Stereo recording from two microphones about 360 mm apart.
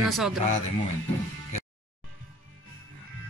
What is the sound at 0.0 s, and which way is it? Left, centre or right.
Speech, centre.